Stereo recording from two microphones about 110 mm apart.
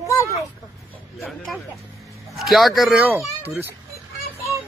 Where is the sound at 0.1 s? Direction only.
30° left (ahead or behind).